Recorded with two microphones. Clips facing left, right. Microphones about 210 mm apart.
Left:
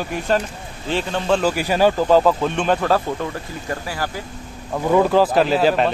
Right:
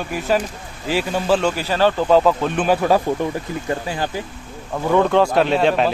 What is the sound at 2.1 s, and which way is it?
Speech, centre (ahead or behind).